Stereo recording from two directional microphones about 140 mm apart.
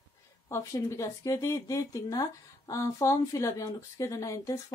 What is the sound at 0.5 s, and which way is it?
Speech, 20° left (ahead or behind).